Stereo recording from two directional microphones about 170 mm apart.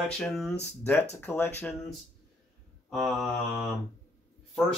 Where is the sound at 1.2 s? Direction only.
10° left (ahead or behind).